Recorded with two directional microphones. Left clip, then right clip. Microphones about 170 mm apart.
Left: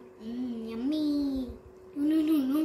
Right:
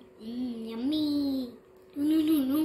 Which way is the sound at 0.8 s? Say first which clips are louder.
Right 1 dB; 20° left (ahead or behind).